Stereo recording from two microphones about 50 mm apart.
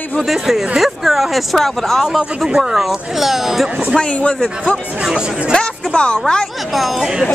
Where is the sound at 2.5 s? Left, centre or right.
Centre.